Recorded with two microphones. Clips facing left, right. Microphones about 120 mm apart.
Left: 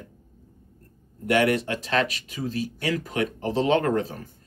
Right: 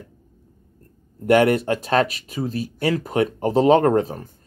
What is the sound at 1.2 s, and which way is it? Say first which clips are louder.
Speech: right 6 dB; 40° right (ahead or behind).